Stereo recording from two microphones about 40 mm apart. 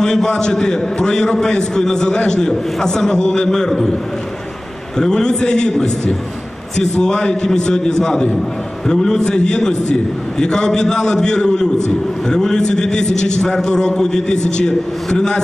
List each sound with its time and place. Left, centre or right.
0.0 s a man's voice: centre
4.9 s a man's voice: centre